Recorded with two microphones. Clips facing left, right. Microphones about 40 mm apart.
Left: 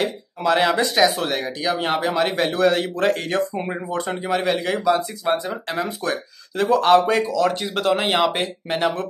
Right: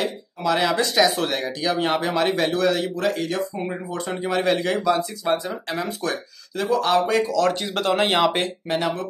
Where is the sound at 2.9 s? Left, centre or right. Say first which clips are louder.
Left 3 dB; left.